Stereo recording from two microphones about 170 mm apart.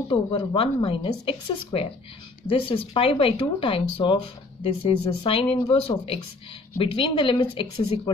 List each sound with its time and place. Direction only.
0.1 s a woman's voice: 30° left (ahead or behind)